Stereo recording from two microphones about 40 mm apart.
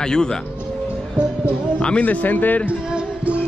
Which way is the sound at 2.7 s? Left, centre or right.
Right.